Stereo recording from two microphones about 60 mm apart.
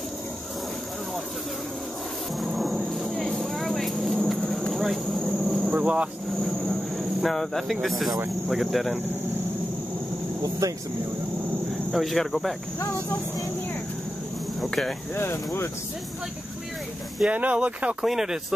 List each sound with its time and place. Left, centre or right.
2.3 s a sound: centre
5.7 s cricket: right
6.6 s cricket: centre
8.5 s speech: centre
10.6 s speech: right
11.9 s speech: centre
12.7 s speech: left
14.6 s speech: centre
15.1 s speech: left
17.3 s speech: right
18.0 s speech: centre